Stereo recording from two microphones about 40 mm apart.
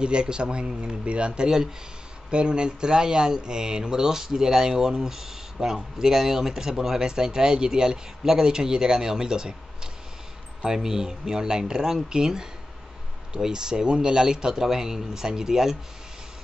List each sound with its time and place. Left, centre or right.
0.0 s a man's voice: right
10.6 s speech: centre